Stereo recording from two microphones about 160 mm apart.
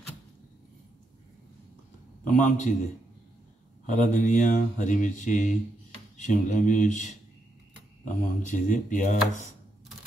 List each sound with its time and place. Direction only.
2.2 s speech: 55° left (ahead or behind)
3.8 s speech: 50° left (ahead or behind)